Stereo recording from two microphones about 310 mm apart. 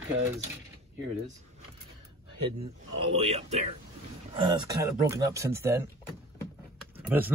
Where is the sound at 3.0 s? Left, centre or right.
Centre.